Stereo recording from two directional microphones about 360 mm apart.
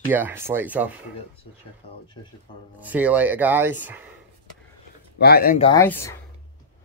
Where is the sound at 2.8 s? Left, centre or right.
Centre.